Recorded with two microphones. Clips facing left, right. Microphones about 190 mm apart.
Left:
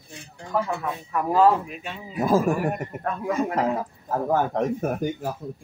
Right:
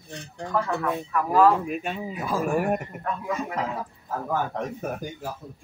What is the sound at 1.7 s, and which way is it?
Speech, 50° right (ahead or behind).